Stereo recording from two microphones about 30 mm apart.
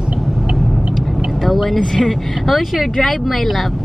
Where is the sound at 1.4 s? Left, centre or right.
Centre.